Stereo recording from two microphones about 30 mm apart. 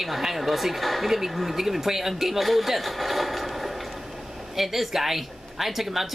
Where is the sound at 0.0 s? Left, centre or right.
Centre.